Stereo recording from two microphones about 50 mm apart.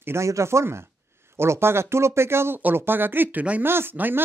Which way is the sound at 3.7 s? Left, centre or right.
Right.